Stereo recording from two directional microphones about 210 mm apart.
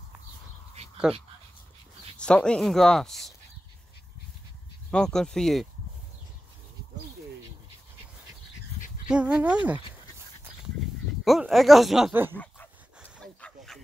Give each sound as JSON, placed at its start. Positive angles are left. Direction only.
{"t": 0.8, "sound": "dog", "side_deg": -30}
{"t": 2.1, "sound": "speech", "side_deg": 5}
{"t": 4.9, "sound": "speech", "side_deg": 5}
{"t": 9.1, "sound": "speech", "side_deg": -5}
{"t": 11.2, "sound": "speech", "side_deg": 0}
{"t": 13.0, "sound": "a sound", "side_deg": 0}